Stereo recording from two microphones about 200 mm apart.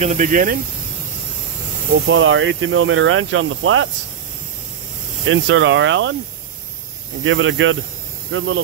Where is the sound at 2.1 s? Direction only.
70° right (ahead or behind).